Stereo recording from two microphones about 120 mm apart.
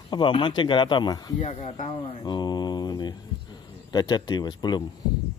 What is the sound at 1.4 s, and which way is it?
Speech, 65° left (ahead or behind).